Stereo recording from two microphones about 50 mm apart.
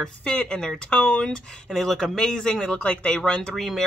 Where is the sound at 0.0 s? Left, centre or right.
Centre.